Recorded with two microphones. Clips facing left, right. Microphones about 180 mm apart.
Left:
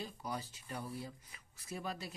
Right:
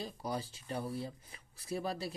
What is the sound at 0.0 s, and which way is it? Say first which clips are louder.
Speech: right 4 dB; 30° right (ahead or behind).